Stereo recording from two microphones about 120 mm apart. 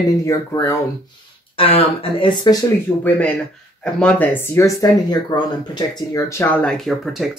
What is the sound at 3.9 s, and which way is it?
Speech, 10° left (ahead or behind).